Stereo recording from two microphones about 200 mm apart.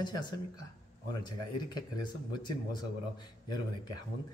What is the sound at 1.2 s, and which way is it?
Speech, 20° left (ahead or behind).